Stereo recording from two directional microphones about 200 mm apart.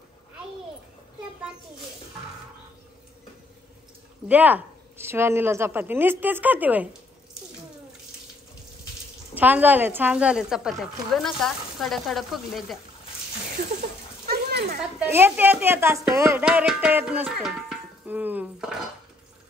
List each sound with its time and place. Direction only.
4.3 s speech: 10° right (ahead or behind)
9.3 s a woman's voice: 10° right (ahead or behind)
13.7 s a sound: 50° right (ahead or behind)
14.8 s speech: 10° right (ahead or behind)